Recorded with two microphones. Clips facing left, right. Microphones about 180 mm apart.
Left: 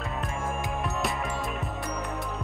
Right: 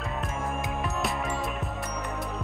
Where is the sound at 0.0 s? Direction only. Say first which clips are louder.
Even; centre (ahead or behind).